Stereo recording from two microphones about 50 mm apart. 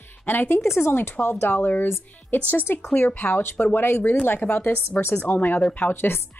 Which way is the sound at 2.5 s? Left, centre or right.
Left.